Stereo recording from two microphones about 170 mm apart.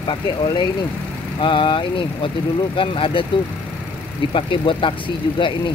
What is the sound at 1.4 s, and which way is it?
Speech, 30° left (ahead or behind).